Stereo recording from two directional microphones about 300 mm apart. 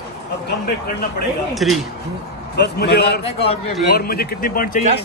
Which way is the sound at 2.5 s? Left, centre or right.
Left.